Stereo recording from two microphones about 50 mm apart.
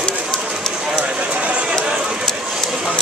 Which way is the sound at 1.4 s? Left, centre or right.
Right.